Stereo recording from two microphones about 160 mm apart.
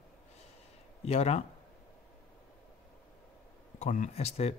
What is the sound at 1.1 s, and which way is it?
Speech, 45° left (ahead or behind).